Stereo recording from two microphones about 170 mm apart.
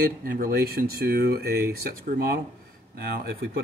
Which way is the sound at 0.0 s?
55° right (ahead or behind).